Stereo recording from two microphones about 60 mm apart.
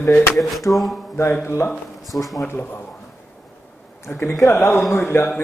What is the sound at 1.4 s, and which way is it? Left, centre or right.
A man's voice, left.